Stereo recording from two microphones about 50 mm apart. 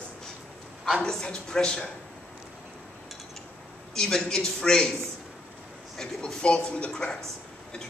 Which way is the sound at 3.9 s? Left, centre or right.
Centre.